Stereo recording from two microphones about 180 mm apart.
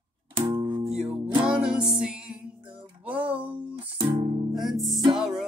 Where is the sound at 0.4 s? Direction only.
25° right (ahead or behind).